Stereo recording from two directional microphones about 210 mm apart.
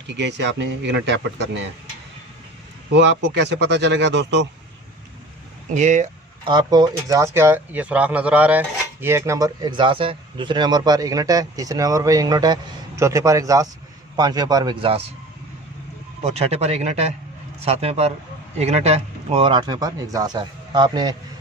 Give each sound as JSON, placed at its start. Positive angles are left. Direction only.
{"t": 0.0, "sound": "speech", "side_deg": -55}
{"t": 2.9, "sound": "speech", "side_deg": -55}
{"t": 5.8, "sound": "speech", "side_deg": -35}
{"t": 6.4, "sound": "speech", "side_deg": -20}
{"t": 16.2, "sound": "speech", "side_deg": -30}